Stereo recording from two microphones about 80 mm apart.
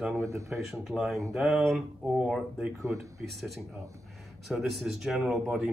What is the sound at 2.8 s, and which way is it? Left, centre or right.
Speech, right.